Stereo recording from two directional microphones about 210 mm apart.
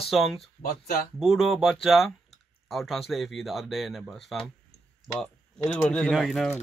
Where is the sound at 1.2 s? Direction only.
Centre (ahead or behind).